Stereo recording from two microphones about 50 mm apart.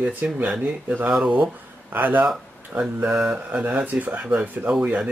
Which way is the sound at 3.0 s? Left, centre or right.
Centre.